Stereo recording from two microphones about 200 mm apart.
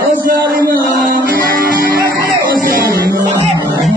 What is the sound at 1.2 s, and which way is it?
Music, 45° right (ahead or behind).